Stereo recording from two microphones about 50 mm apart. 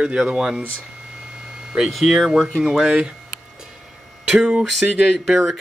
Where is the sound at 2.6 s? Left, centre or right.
Centre.